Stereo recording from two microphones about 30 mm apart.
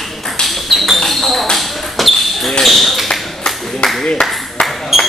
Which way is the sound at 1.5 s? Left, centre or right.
Centre.